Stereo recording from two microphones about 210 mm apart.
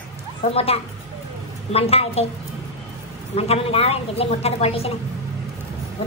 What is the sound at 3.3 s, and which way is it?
A woman's voice, 30° left (ahead or behind).